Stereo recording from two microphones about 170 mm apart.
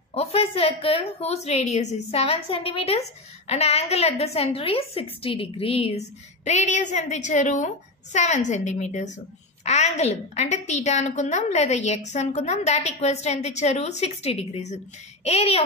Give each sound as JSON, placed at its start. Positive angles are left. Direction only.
{"t": 0.1, "sound": "a woman's voice", "side_deg": 35}